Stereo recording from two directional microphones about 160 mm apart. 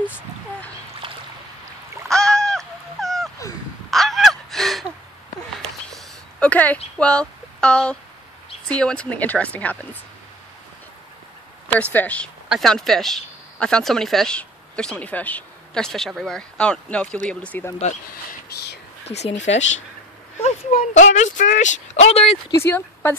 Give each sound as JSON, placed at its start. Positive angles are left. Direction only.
{"t": 1.0, "sound": "boat", "side_deg": -30}
{"t": 2.0, "sound": "a sound", "side_deg": 5}
{"t": 3.9, "sound": "gasp", "side_deg": 0}
{"t": 6.4, "sound": "speech", "side_deg": 10}
{"t": 11.7, "sound": "speech", "side_deg": 10}
{"t": 19.0, "sound": "speech", "side_deg": 40}
{"t": 20.7, "sound": "speech", "side_deg": 50}
{"t": 22.6, "sound": "speech", "side_deg": 15}